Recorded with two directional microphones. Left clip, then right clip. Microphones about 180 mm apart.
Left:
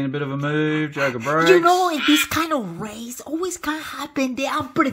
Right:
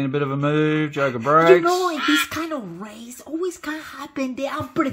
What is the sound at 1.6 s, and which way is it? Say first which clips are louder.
Music: left 3 dB; 50° left (ahead or behind).